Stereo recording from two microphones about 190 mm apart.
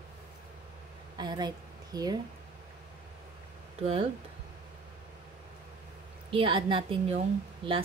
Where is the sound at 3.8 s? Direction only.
30° right (ahead or behind).